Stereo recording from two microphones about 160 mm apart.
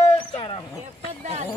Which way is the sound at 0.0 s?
35° left (ahead or behind).